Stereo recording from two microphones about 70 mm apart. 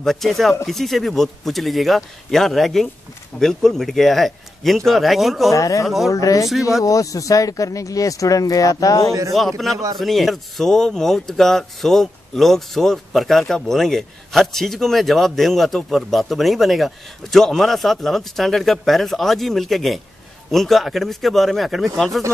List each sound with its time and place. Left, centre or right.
0.0 s speech: centre
5.5 s speech: left
9.3 s speech: centre